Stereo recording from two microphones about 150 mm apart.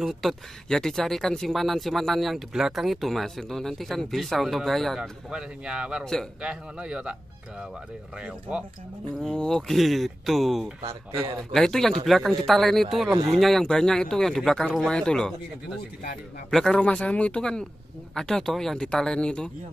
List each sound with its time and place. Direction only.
0.0 s a man's voice: centre (ahead or behind)
8.2 s a man's voice: 5° right (ahead or behind)
9.2 s speech: 5° left (ahead or behind)
10.9 s speech: 25° right (ahead or behind)
11.5 s speech: 5° left (ahead or behind)
16.4 s speech: 5° left (ahead or behind)